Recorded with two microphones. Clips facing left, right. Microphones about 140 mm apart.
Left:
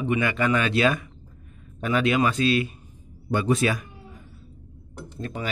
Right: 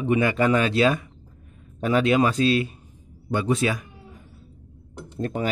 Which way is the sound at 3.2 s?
20° right (ahead or behind).